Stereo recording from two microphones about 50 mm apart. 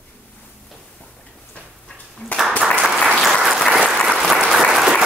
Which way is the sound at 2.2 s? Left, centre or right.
Left.